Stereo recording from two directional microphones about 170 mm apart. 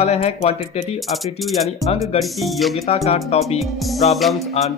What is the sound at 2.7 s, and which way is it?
Speech, 40° left (ahead or behind).